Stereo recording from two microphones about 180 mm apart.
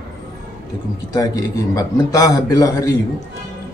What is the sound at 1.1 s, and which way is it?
Speech, 20° left (ahead or behind).